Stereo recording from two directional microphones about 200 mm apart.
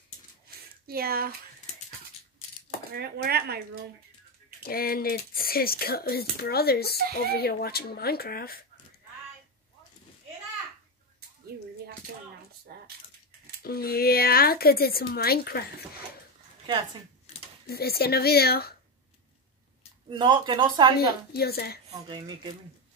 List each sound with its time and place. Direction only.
0.8 s speech: 50° right (ahead or behind)
2.9 s speech: 50° right (ahead or behind)
4.6 s speech: 50° left (ahead or behind)
13.6 s speech: 50° left (ahead or behind)
17.6 s speech: 50° left (ahead or behind)
20.1 s speech: 25° right (ahead or behind)
21.0 s speech: 50° left (ahead or behind)
21.8 s speech: 25° right (ahead or behind)